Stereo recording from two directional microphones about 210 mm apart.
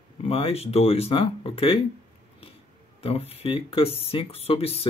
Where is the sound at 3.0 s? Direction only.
30° left (ahead or behind).